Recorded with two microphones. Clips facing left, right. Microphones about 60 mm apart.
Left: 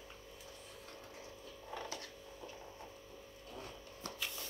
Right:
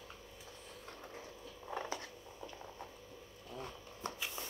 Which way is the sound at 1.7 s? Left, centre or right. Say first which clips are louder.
Right 4 dB; right.